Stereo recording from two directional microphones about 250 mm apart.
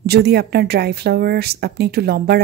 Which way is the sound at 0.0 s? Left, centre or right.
Right.